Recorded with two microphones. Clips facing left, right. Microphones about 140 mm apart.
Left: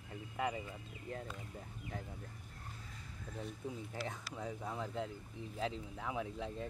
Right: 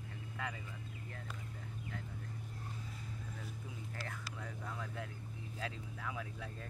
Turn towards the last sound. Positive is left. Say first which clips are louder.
# left 4 dB
turn(degrees=20)  # may be behind; listen again after turning